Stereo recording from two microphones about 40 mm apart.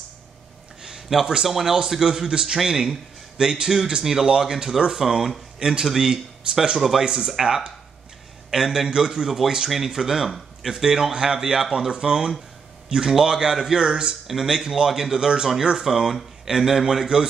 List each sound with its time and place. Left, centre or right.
0.8 s speech: centre
14.2 s speech: centre